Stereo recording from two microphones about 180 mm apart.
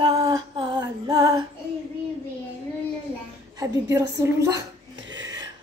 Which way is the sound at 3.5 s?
20° right (ahead or behind).